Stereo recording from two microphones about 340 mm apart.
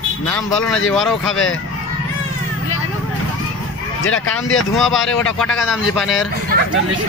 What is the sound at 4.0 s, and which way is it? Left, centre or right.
Speech, left.